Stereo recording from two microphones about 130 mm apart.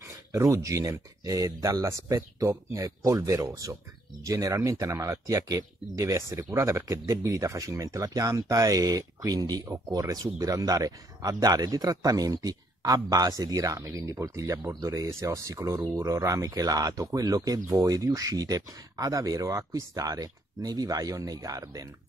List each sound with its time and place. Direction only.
0.3 s speech: 20° right (ahead or behind)